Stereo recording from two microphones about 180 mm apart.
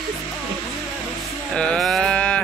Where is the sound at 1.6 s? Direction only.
5° left (ahead or behind).